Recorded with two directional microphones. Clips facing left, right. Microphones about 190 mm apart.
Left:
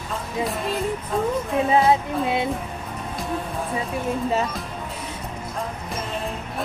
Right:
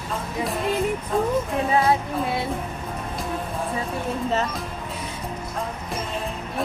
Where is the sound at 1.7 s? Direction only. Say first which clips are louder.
Left 2 dB; 20° left (ahead or behind).